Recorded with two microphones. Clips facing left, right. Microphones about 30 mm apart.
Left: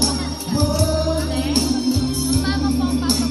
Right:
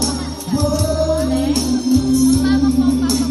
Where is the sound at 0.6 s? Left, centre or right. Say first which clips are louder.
Right 3 dB; left.